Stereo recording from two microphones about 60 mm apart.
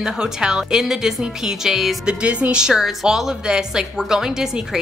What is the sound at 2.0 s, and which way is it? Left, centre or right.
Music, right.